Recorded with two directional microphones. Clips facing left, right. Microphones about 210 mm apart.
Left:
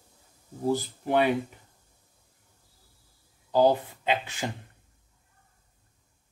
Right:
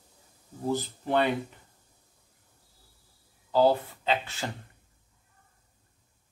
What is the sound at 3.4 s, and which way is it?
Speech, 15° left (ahead or behind).